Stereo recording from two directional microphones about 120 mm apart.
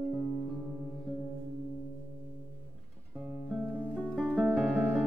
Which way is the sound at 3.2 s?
5° right (ahead or behind).